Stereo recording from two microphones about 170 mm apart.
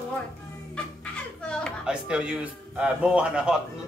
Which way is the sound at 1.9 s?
5° right (ahead or behind).